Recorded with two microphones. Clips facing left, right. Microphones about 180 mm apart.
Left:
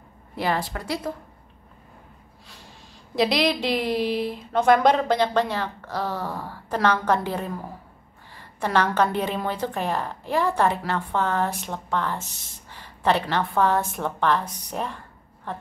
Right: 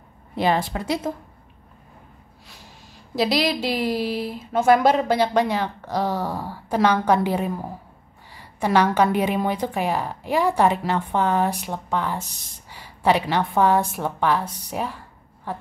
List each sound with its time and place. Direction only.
0.4 s a woman's voice: 20° right (ahead or behind)
3.2 s a woman's voice: centre (ahead or behind)